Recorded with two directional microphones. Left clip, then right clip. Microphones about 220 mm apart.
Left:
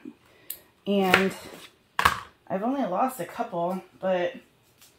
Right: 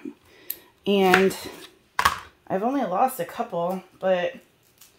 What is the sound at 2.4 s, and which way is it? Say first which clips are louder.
Speech: right 3 dB; 65° right (ahead or behind).